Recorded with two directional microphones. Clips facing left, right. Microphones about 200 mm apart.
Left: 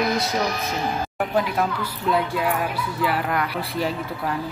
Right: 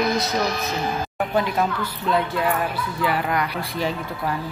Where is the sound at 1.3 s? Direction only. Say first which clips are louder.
Right 1 dB; 5° left (ahead or behind).